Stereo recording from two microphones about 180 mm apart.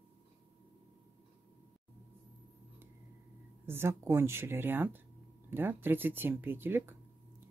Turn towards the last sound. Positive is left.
turn(degrees=-10)  # may be behind; listen again after turning